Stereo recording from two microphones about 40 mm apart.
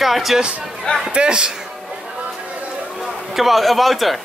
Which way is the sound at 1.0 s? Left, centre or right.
Right.